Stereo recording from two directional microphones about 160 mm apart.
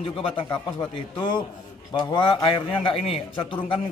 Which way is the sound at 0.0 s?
30° left (ahead or behind).